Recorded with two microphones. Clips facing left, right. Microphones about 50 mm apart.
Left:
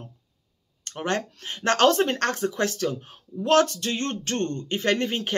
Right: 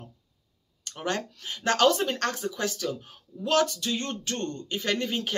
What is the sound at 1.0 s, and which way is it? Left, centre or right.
Speech, left.